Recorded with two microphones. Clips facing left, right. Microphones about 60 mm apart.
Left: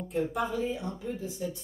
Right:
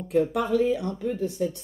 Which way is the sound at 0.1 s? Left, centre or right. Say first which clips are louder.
Right 8 dB; right.